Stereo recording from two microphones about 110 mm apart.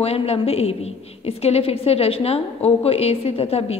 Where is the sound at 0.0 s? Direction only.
70° left (ahead or behind).